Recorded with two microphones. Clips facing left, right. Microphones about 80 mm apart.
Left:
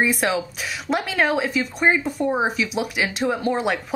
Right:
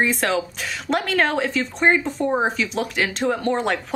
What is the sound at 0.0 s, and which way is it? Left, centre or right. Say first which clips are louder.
A woman's voice: even; centre.